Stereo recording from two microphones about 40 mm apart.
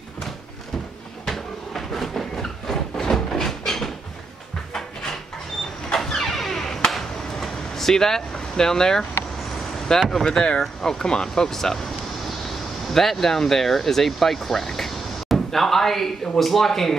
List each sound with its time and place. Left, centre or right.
1.2 s a sound: centre
6.0 s music: centre
6.9 s a sound: centre
9.9 s speech: centre
10.2 s speech: centre
12.9 s speech: centre